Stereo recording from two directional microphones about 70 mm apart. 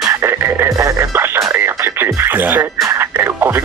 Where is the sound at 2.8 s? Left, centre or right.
Right.